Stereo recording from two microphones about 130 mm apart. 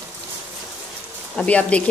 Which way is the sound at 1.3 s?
10° left (ahead or behind).